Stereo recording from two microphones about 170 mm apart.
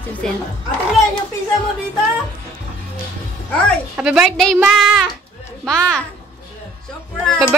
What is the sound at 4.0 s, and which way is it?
Speech, 5° right (ahead or behind).